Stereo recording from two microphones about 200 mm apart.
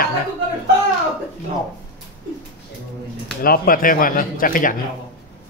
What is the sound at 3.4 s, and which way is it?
Speech, 45° left (ahead or behind).